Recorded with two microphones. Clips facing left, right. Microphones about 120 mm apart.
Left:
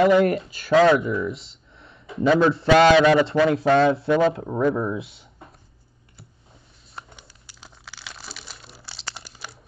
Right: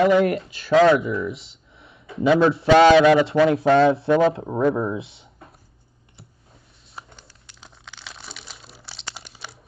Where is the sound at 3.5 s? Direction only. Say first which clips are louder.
Right 2 dB; 25° right (ahead or behind).